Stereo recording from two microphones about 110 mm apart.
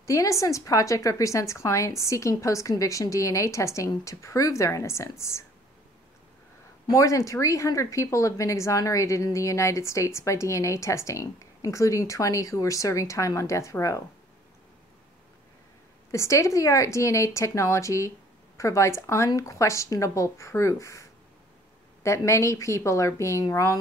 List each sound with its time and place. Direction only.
0.0 s speech: 30° left (ahead or behind)
6.9 s speech: 30° left (ahead or behind)
16.1 s speech: 25° left (ahead or behind)